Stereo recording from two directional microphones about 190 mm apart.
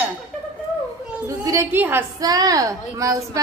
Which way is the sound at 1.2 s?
15° right (ahead or behind).